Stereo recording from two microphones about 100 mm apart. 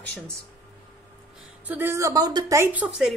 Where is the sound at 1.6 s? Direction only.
25° right (ahead or behind); by 2.6 s 40° right (ahead or behind).